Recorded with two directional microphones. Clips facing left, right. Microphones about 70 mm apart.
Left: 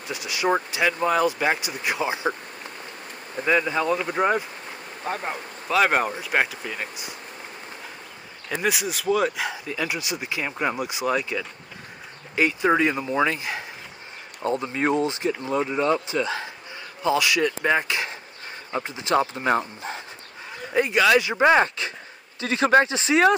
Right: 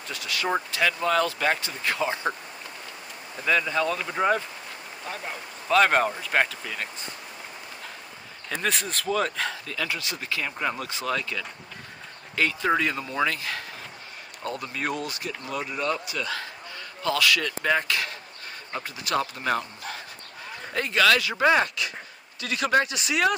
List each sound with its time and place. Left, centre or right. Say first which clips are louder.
0.1 s speech: left 4 dB; centre
3.3 s speech: left 2 dB; centre
5.0 s speech: left 6 dB; left
5.7 s speech: even; centre
8.5 s speech: left 3 dB; centre; by 23.3 s left